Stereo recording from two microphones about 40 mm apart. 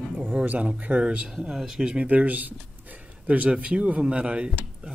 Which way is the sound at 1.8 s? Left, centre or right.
Right.